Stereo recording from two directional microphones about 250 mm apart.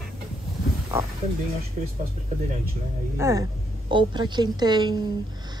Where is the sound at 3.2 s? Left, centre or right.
Centre.